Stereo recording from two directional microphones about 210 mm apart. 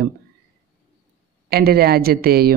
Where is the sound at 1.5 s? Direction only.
50° right (ahead or behind).